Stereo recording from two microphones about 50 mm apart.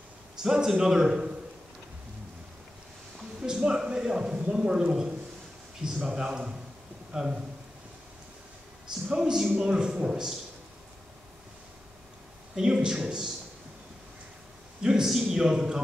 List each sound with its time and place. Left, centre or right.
0.4 s a man's voice: centre
3.3 s a sound: centre
4.5 s a man's voice: centre
9.1 s a man's voice: centre
12.5 s a man's voice: centre
14.8 s a man's voice: centre